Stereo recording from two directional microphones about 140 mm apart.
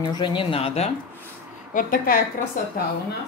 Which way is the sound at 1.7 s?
85° left.